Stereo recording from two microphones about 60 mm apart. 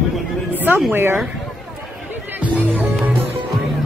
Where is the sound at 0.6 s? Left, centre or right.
Right.